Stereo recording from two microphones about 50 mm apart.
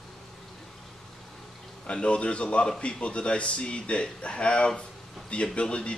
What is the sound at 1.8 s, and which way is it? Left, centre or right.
Speech, left.